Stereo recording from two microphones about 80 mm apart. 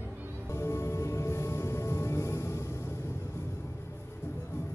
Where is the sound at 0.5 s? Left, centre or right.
Left.